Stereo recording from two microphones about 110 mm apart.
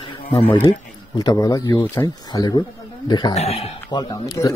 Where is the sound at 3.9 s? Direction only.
35° left (ahead or behind).